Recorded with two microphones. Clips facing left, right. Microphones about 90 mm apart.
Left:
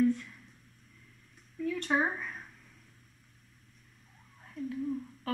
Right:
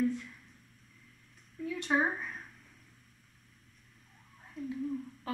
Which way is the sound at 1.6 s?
15° right (ahead or behind).